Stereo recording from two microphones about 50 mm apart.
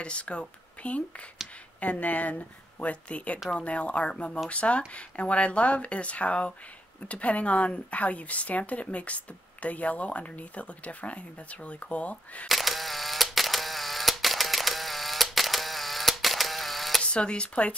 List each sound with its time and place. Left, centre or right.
0.0 s speech: left
12.4 s camera: centre
17.0 s speech: left